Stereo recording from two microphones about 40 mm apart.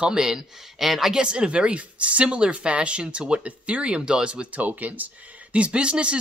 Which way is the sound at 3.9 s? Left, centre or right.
Right.